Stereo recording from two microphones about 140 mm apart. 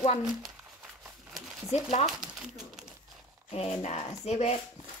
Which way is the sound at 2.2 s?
5° right (ahead or behind).